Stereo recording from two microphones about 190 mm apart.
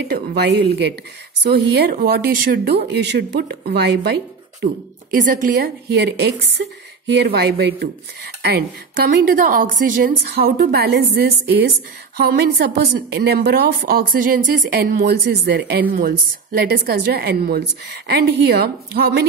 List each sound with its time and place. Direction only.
0.1 s a woman's voice: 60° right (ahead or behind)
5.1 s a woman's voice: 45° right (ahead or behind)